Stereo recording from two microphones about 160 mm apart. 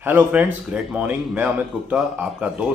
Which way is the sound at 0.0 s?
10° right (ahead or behind).